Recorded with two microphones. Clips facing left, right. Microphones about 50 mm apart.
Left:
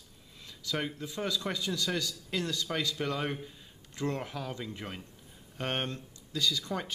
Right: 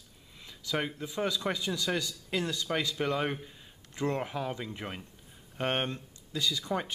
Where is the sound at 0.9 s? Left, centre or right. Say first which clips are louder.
Right 2 dB; centre.